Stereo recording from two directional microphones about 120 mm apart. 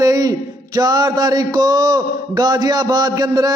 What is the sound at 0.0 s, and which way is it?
A man's voice, 30° right (ahead or behind).